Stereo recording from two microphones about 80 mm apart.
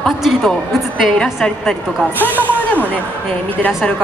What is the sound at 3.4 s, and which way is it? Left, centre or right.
Speech, centre.